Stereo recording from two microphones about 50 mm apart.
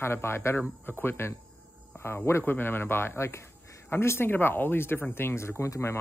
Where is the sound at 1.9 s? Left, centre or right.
Left.